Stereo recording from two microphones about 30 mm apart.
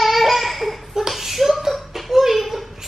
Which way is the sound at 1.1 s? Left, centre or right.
Centre.